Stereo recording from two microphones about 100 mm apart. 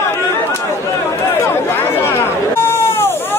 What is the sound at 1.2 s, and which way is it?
Chatter, 30° left (ahead or behind).